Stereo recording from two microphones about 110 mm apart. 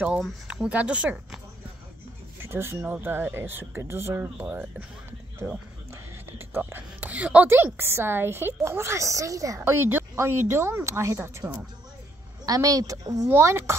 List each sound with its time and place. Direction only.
0.5 s speech: 10° right (ahead or behind)
2.4 s a woman's voice: 25° right (ahead or behind)
5.4 s speech: 5° right (ahead or behind)
6.3 s a woman's voice: 20° right (ahead or behind)
12.4 s a woman's voice: 35° right (ahead or behind)